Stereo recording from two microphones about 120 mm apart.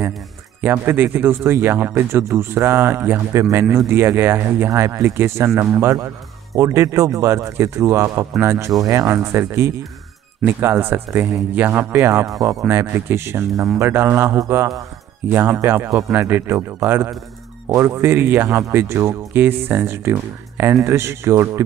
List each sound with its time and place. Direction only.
0.6 s speech: 15° right (ahead or behind)